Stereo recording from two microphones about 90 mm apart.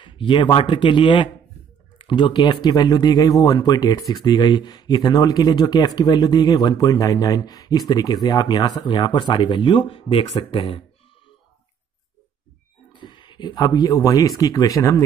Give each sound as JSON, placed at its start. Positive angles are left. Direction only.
{"t": 0.0, "sound": "speech", "side_deg": 65}
{"t": 12.9, "sound": "speech", "side_deg": 65}